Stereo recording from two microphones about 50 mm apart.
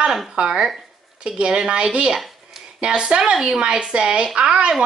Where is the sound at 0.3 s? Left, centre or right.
Centre.